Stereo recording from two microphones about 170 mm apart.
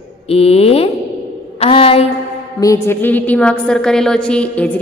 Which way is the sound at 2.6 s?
15° left (ahead or behind).